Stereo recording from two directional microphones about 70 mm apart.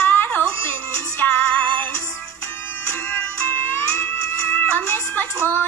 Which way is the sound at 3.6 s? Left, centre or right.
Left.